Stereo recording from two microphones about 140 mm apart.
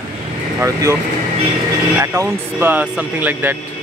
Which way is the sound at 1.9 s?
15° right (ahead or behind).